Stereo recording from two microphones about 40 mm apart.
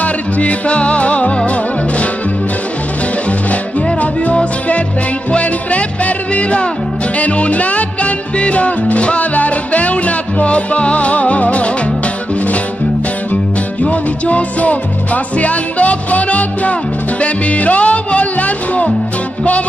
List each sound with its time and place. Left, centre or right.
0.0 s music: left
4.0 s music: left
13.8 s music: left